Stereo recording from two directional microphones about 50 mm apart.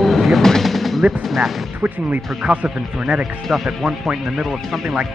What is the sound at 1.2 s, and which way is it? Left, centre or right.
Speech, centre.